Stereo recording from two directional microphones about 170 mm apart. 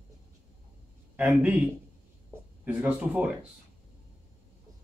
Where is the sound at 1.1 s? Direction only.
10° right (ahead or behind).